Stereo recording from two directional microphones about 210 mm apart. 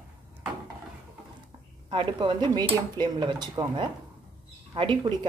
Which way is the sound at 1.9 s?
25° right (ahead or behind).